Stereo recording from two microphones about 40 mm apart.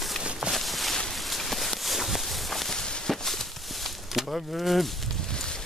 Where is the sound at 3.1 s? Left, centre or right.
Centre.